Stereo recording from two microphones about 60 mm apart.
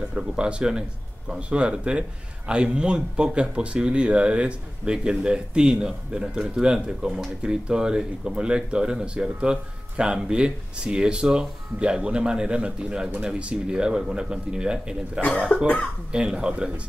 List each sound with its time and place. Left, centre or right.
0.1 s speech: centre
15.2 s speech: left
16.1 s speech: centre